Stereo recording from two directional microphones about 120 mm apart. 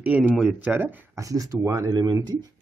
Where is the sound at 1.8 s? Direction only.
35° right (ahead or behind).